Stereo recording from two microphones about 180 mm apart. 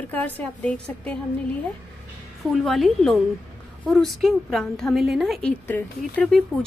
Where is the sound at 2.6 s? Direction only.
Centre (ahead or behind).